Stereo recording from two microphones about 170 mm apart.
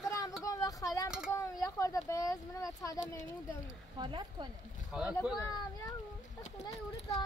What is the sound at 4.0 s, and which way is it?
Speech, 25° right (ahead or behind).